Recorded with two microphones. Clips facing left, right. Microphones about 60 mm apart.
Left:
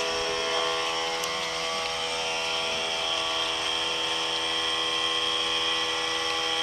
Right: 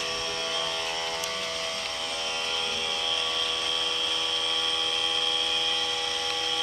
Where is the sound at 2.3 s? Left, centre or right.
Left.